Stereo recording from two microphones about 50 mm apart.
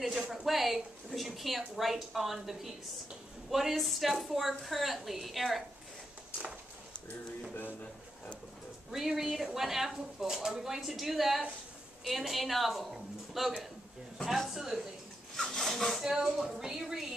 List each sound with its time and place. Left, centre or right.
0.5 s speech: centre
7.5 s a man's voice: left
8.9 s a woman's voice: centre
15.3 s rub: centre
16.0 s speech: centre